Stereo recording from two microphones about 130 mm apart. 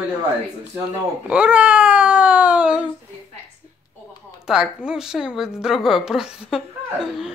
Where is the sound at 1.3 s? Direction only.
10° right (ahead or behind).